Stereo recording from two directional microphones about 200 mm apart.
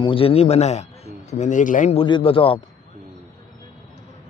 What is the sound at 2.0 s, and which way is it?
Speech, 25° left (ahead or behind).